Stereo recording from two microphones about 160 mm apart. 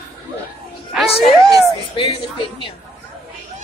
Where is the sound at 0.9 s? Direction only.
Centre (ahead or behind).